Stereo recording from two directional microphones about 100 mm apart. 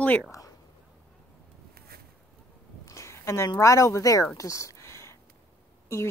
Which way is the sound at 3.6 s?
30° left (ahead or behind).